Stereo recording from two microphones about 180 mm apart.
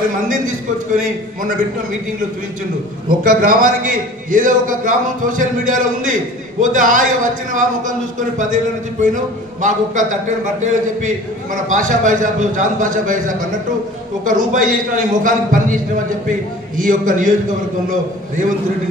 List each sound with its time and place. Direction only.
0.3 s a man's voice: 45° right (ahead or behind)
3.3 s a man's voice: 50° right (ahead or behind)